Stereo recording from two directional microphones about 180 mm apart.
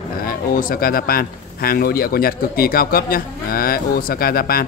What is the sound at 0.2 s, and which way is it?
Speech, 55° left (ahead or behind).